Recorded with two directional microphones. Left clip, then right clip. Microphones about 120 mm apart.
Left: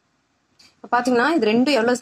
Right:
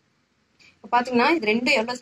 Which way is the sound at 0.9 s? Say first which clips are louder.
Left 2 dB; 35° left (ahead or behind).